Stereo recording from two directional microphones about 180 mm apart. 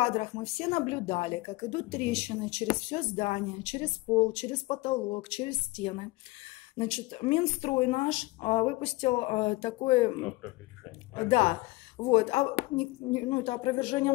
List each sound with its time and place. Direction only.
0.0 s speech: 35° left (ahead or behind)
11.2 s a woman's voice: 30° left (ahead or behind)